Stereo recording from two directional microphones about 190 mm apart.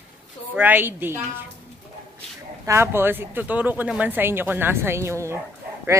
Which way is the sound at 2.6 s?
15° right (ahead or behind).